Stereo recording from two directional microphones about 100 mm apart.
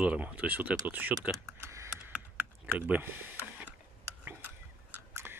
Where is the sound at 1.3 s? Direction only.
30° right (ahead or behind).